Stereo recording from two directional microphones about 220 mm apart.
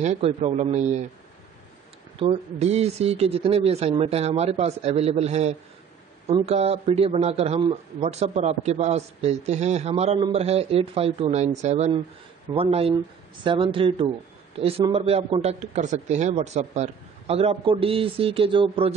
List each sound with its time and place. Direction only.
0.0 s a man's voice: 30° right (ahead or behind)
2.1 s a man's voice: 25° right (ahead or behind)